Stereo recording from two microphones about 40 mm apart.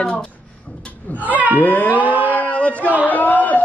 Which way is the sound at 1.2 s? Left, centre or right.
Right.